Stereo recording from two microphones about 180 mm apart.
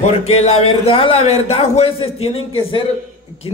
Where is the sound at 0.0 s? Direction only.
35° left (ahead or behind).